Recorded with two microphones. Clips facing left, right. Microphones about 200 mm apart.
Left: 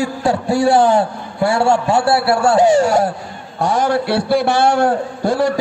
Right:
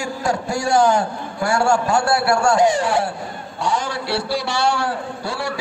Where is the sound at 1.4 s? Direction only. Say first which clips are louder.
Left 3 dB; 25° left (ahead or behind).